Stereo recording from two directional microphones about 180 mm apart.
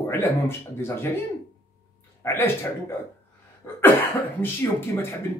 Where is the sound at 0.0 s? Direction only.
15° left (ahead or behind).